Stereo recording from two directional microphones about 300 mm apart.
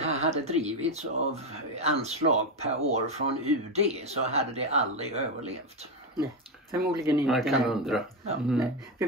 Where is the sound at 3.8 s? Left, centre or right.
Right.